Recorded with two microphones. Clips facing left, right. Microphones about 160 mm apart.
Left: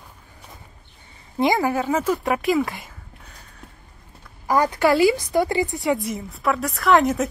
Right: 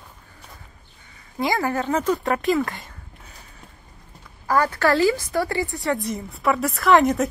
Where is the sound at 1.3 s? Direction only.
20° left (ahead or behind).